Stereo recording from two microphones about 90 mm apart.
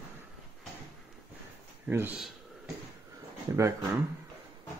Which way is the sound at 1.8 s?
20° right (ahead or behind).